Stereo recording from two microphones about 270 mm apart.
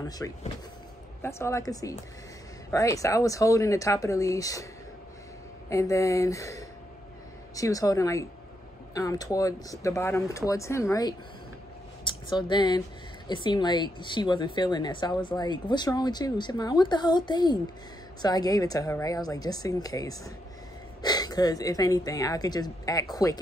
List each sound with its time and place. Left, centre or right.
0.2 s speech: centre
5.7 s speech: centre